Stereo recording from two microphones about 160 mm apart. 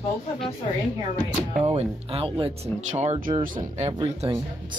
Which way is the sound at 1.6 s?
35° right (ahead or behind).